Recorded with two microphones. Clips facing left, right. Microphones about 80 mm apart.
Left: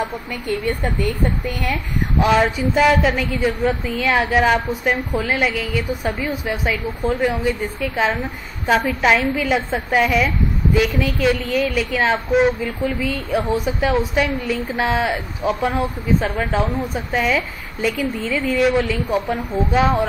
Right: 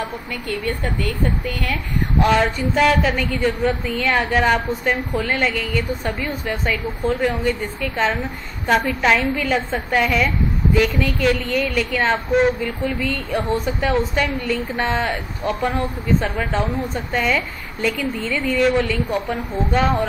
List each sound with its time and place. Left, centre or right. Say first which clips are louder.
0.0 s a woman's voice: left 2 dB; centre